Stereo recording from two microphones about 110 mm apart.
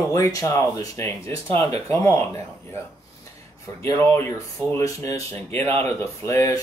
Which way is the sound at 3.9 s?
20° left (ahead or behind).